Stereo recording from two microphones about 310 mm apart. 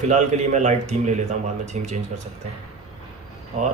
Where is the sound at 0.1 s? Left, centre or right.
Right.